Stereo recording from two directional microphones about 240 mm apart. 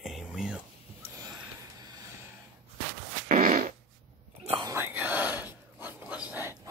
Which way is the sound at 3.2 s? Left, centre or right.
Right.